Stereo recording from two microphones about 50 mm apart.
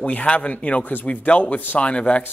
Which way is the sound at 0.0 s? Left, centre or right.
Left.